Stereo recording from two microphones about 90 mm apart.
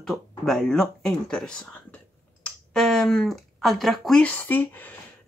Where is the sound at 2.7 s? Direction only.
5° left (ahead or behind).